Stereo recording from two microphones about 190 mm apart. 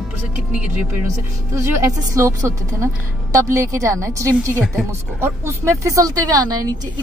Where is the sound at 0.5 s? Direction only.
10° right (ahead or behind).